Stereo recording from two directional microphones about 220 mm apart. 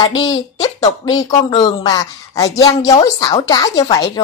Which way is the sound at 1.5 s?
20° left (ahead or behind).